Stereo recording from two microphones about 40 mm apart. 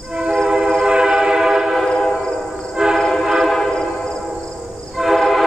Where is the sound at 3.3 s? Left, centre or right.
Centre.